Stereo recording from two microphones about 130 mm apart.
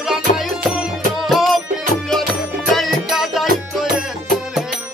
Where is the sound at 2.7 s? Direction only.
Centre (ahead or behind).